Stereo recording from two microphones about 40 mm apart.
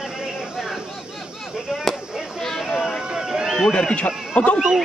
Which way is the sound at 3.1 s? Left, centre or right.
Centre.